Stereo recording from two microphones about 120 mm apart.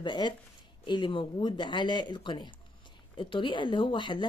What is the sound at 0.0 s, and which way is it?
A woman's voice, 40° left (ahead or behind).